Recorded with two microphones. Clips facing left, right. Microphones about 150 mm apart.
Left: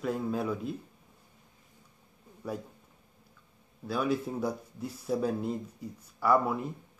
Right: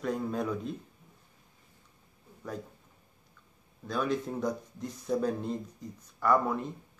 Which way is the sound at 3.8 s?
5° left (ahead or behind).